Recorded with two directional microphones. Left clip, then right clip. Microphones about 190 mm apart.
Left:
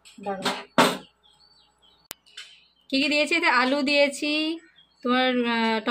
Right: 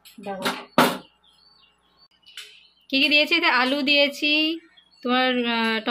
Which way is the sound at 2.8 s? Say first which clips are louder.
Right 4 dB; 5° left (ahead or behind).